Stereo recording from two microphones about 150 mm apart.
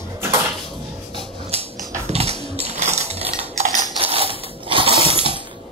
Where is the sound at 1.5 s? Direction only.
40° right (ahead or behind).